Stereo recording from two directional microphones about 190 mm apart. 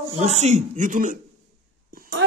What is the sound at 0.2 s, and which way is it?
Speech, 35° right (ahead or behind).